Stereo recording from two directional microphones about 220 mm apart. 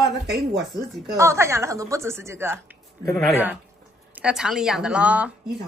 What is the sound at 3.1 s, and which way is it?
Speech, 5° left (ahead or behind).